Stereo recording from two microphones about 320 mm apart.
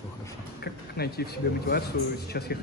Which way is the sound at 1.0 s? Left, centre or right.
Left.